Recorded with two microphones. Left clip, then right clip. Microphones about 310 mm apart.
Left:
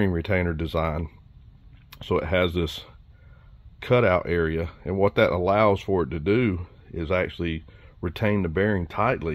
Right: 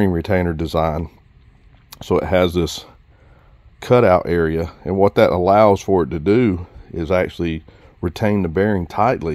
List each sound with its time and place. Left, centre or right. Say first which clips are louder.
0.0 s speech: right 6 dB; right